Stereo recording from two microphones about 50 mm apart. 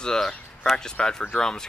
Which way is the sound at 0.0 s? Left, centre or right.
Centre.